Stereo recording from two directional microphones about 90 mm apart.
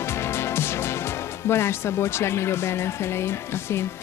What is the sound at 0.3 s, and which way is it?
Music, 30° left (ahead or behind).